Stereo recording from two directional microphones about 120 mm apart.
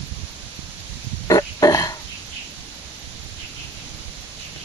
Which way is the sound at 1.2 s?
30° left (ahead or behind).